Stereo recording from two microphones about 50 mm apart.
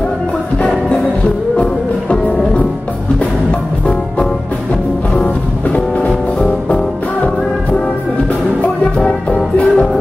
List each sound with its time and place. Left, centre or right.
1.6 s music: left
5.1 s music: left
9.0 s music: left